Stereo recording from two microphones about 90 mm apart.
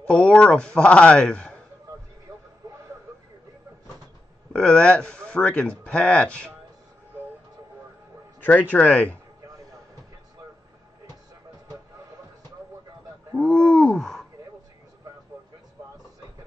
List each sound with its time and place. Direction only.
0.0 s speech: 15° left (ahead or behind)
4.5 s speech: 10° left (ahead or behind)
8.4 s speech: 20° left (ahead or behind)
13.4 s a sound: 10° left (ahead or behind)